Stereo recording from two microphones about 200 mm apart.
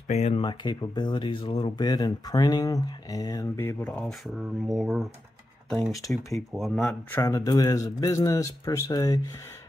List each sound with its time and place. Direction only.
0.1 s speech: 30° left (ahead or behind); by 5.0 s centre (ahead or behind)
6.3 s speech: centre (ahead or behind)
7.2 s speech: 15° left (ahead or behind)